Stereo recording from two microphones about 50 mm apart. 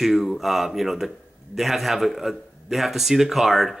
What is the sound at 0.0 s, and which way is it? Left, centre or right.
A man's voice, centre.